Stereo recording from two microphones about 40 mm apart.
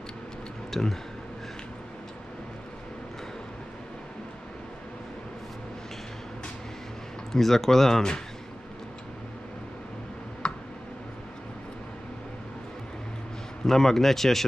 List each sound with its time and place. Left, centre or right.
0.7 s speech: centre
7.3 s speech: centre
10.4 s tick: left
13.7 s speech: centre